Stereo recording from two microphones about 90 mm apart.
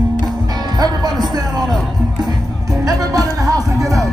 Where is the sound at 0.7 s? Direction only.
50° right (ahead or behind).